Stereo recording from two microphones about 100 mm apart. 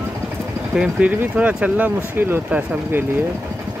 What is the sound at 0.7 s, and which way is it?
Speech, 10° right (ahead or behind).